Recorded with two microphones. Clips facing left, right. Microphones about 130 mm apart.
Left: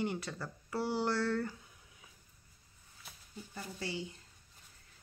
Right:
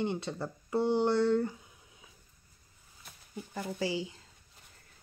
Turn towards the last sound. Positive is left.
turn(degrees=-90)